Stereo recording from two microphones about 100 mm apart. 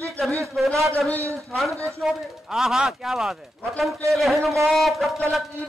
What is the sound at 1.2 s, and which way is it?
Speech, 30° right (ahead or behind).